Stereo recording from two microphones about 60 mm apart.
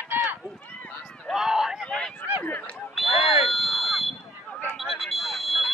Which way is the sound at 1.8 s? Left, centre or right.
Centre.